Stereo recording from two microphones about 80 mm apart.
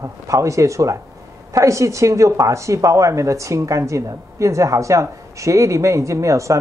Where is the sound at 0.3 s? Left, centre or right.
Right.